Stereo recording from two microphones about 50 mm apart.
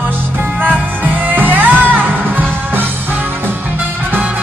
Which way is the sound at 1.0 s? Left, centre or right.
Right.